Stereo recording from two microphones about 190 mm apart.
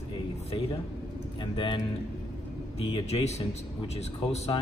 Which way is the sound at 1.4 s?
25° left (ahead or behind).